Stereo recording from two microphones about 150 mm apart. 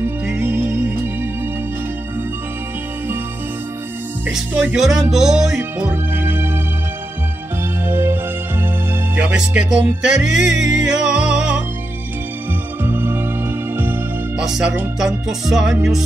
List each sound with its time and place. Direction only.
0.0 s music: 15° right (ahead or behind)
4.3 s music: 5° right (ahead or behind)
7.8 s music: 15° right (ahead or behind)
9.1 s speech: 5° right (ahead or behind)
12.8 s music: 15° right (ahead or behind)
14.4 s music: 5° right (ahead or behind)